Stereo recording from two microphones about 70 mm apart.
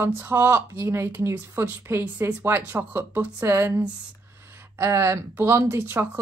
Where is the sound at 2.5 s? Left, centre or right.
Right.